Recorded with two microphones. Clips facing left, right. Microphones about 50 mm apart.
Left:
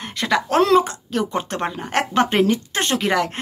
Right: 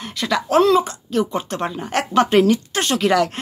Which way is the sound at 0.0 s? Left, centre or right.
Left.